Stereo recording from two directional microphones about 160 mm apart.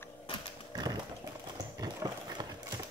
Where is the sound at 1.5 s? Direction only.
25° right (ahead or behind).